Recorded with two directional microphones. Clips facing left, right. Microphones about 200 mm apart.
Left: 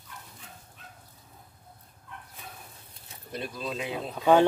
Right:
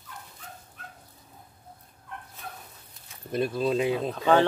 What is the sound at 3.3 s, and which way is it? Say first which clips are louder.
Speech: right 9 dB; 50° right (ahead or behind).